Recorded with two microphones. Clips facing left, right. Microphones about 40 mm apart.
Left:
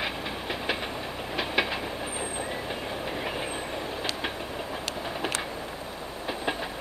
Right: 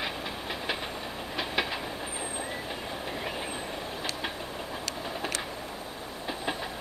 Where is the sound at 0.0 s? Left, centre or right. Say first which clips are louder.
Left 2 dB; centre.